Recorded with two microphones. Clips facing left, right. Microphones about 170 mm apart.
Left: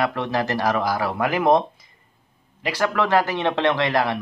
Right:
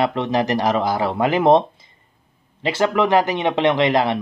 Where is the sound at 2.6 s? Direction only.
25° right (ahead or behind).